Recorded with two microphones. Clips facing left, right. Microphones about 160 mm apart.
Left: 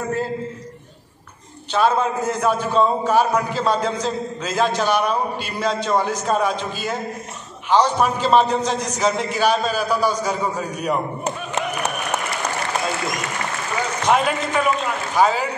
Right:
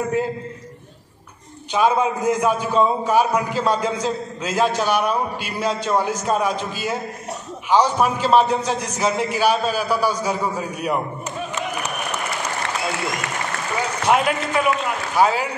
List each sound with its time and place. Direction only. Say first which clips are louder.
1.7 s a man's voice: even; 10° right (ahead or behind)
14.0 s a man's voice: even; 5° right (ahead or behind)